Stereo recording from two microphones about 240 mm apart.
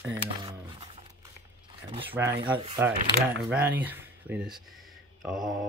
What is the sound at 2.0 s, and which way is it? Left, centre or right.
Speech, centre.